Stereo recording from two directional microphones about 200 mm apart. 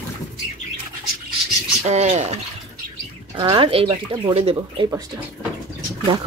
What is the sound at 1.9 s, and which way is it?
Speech, 35° right (ahead or behind).